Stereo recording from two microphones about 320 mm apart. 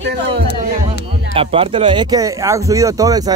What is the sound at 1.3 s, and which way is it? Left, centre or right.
Speech, centre.